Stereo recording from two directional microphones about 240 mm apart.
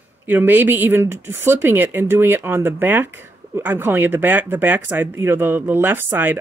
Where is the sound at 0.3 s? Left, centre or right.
Centre.